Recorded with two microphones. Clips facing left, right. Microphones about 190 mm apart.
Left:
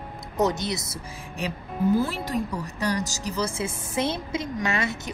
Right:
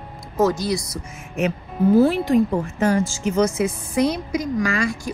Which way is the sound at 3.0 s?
40° left (ahead or behind).